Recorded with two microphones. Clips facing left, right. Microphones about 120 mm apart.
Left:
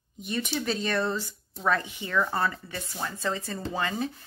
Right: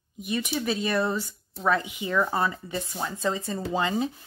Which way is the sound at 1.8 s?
15° right (ahead or behind).